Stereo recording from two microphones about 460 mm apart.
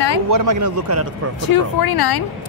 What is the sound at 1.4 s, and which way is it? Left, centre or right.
Speech, left.